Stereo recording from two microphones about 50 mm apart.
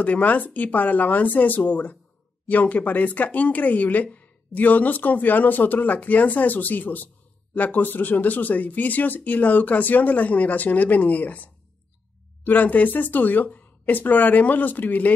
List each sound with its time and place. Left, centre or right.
0.0 s speech: left